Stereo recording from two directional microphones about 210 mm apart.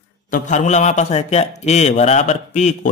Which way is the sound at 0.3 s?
35° left (ahead or behind).